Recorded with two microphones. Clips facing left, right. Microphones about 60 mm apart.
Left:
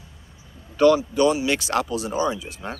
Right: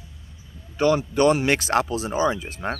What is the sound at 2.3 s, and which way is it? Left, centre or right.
Speech, right.